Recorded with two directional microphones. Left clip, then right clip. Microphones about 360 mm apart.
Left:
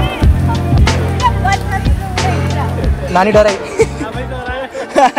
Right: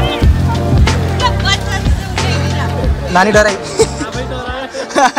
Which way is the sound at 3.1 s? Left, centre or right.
Centre.